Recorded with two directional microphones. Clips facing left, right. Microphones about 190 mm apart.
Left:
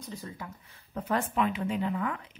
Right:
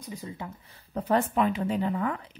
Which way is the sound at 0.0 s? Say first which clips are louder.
Right 2 dB; 10° right (ahead or behind).